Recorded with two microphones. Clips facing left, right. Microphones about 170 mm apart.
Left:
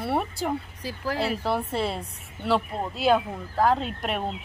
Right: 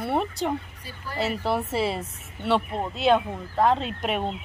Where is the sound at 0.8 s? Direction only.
90° left.